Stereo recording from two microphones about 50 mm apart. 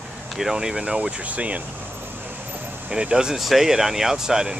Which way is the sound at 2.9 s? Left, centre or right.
Centre.